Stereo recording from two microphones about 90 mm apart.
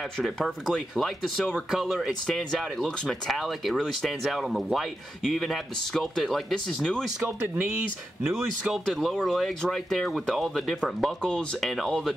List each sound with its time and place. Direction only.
0.2 s speech: centre (ahead or behind)
7.2 s speech: 20° right (ahead or behind)
8.3 s speech: centre (ahead or behind)